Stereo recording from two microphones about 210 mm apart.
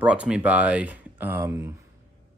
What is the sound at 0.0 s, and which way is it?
Speech, 5° right (ahead or behind).